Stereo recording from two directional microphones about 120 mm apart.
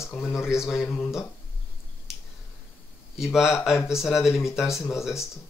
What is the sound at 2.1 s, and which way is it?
Finger snapping, 5° right (ahead or behind).